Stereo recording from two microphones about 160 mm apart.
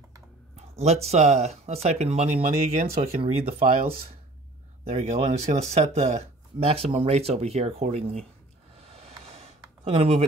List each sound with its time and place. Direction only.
0.6 s speech: 40° right (ahead or behind)
4.8 s speech: 40° right (ahead or behind)
8.7 s a sound: 40° right (ahead or behind)